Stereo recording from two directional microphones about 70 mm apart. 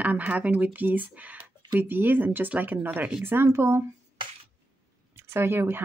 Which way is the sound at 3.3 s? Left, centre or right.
Right.